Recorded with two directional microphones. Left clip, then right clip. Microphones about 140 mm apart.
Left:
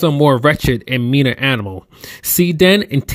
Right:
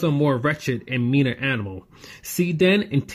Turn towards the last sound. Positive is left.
turn(degrees=55)  # may be behind; listen again after turning